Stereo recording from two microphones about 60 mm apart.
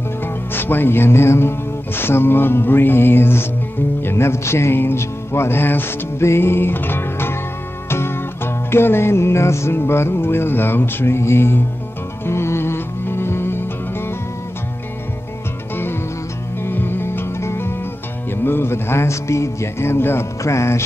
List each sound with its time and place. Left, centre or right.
0.5 s a man's voice: left
2.0 s music: left
15.7 s music: left
20.4 s music: left